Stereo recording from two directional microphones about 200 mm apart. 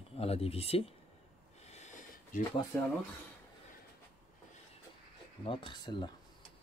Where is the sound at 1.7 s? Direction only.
35° left (ahead or behind).